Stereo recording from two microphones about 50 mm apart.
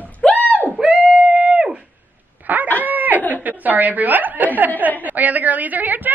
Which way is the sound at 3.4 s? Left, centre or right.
Right.